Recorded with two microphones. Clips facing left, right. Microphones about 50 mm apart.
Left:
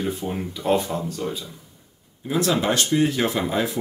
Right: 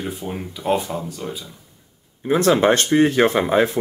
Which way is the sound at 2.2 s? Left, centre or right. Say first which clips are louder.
Right 6 dB; right.